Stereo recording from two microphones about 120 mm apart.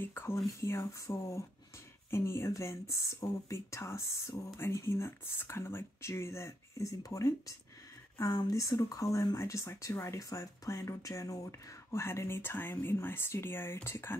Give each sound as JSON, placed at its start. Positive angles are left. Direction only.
{"t": 0.0, "sound": "speech", "side_deg": 20}